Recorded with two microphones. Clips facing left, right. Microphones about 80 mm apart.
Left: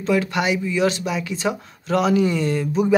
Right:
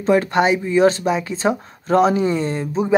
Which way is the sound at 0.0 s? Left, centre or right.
Right.